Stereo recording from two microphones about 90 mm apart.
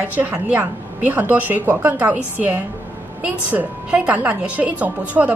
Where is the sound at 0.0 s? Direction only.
20° right (ahead or behind).